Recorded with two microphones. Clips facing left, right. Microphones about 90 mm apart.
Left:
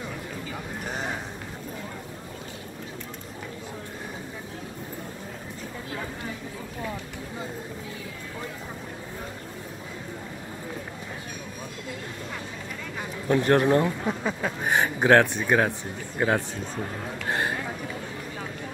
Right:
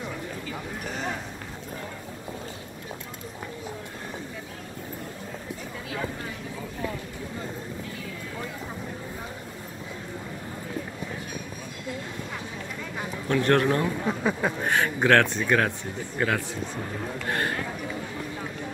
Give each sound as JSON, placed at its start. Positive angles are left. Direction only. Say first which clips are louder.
{"t": 13.3, "sound": "speech", "louder": "left 2 dB", "side_deg": 20}
{"t": 14.0, "sound": "speech", "louder": "right 2 dB", "side_deg": -5}
{"t": 14.6, "sound": "speech", "louder": "left 3 dB", "side_deg": 15}
{"t": 16.2, "sound": "speech", "louder": "left 2 dB", "side_deg": 25}